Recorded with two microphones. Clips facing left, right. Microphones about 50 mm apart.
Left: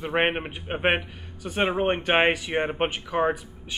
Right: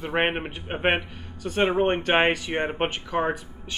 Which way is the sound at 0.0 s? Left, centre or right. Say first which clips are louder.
Left 1 dB; centre.